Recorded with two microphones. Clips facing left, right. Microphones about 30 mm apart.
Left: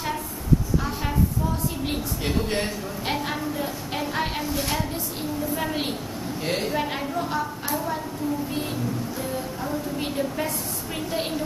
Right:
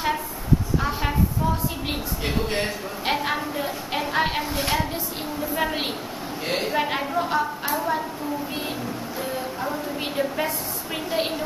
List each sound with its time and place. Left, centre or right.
1.9 s a woman's voice: centre
9.2 s a woman's voice: centre